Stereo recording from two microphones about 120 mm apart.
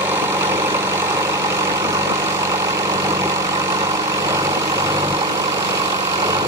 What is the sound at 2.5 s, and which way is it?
Vehicle, 25° right (ahead or behind).